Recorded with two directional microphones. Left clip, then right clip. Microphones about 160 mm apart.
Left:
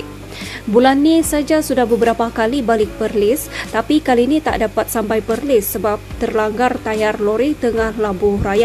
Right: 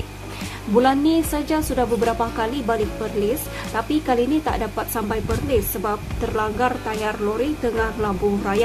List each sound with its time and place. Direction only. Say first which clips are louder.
0.7 s a woman's voice: left 6 dB; 35° left (ahead or behind)